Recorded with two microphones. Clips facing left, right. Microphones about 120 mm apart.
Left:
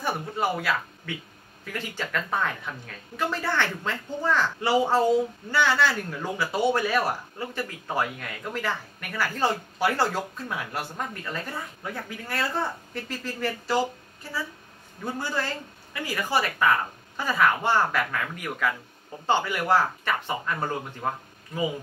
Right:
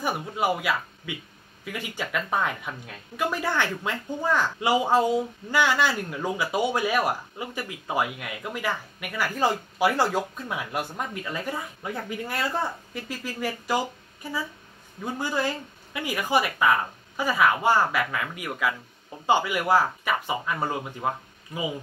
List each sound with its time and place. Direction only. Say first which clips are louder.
0.0 s speech: right 1 dB; 10° right (ahead or behind)
15.1 s speech: right 4 dB; 15° right (ahead or behind)